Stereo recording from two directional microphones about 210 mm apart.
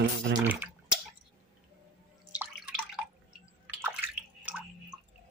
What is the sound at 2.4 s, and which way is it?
Drip, 5° right (ahead or behind).